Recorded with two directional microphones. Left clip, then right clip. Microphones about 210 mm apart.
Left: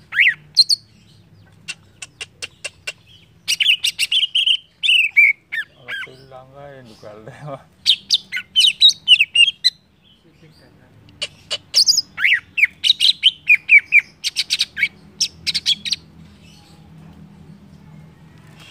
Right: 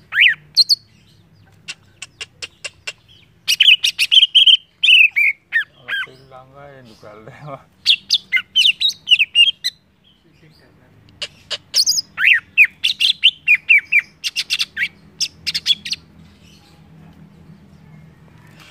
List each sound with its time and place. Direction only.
0.1 s bird: 15° right (ahead or behind)
1.7 s chicken: 5° right (ahead or behind)
3.4 s bird: 20° right (ahead or behind)
5.9 s goose: 20° right (ahead or behind)
6.2 s speech: centre (ahead or behind)
7.8 s bird: 20° right (ahead or behind); by 9.8 s 5° right (ahead or behind)
11.1 s bird: 5° right (ahead or behind)